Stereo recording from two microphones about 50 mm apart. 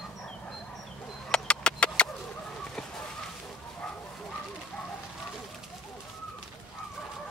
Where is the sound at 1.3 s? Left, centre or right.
Centre.